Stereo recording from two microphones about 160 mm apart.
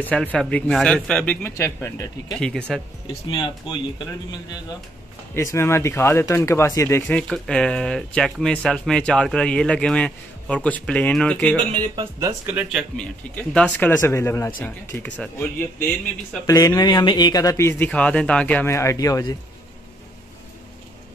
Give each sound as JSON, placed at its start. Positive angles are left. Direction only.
{"t": 0.0, "sound": "speech", "side_deg": 10}
{"t": 2.3, "sound": "speech", "side_deg": 5}
{"t": 3.3, "sound": "speech", "side_deg": 30}
{"t": 5.3, "sound": "speech", "side_deg": 15}
{"t": 11.7, "sound": "speech", "side_deg": -30}
{"t": 12.2, "sound": "speech", "side_deg": -20}
{"t": 12.9, "sound": "speech", "side_deg": 10}
{"t": 16.4, "sound": "speech", "side_deg": 20}